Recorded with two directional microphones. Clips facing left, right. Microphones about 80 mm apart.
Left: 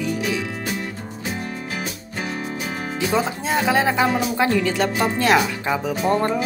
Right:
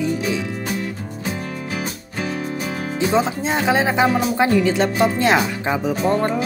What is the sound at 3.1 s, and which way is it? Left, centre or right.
Speech, right.